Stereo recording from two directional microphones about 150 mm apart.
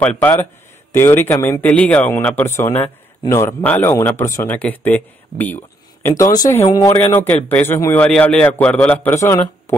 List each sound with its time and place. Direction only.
0.0 s speech: 10° left (ahead or behind)